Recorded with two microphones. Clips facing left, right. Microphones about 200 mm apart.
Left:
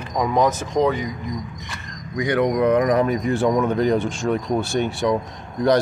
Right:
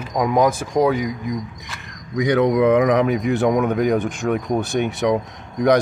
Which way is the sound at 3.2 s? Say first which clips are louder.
Right 1 dB; 15° right (ahead or behind).